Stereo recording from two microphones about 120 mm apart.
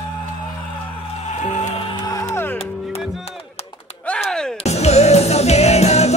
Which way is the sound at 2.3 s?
20° left (ahead or behind).